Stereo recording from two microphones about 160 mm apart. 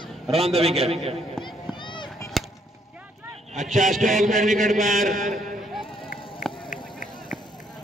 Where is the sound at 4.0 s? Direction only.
55° right (ahead or behind).